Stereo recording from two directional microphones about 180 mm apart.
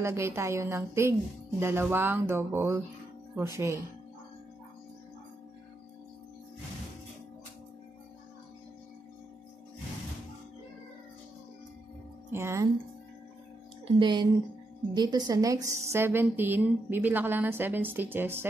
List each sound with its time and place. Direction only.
0.0 s a woman's voice: 15° right (ahead or behind)
12.3 s a woman's voice: 15° right (ahead or behind)
13.8 s a woman's voice: 25° right (ahead or behind); by 18.5 s 10° right (ahead or behind)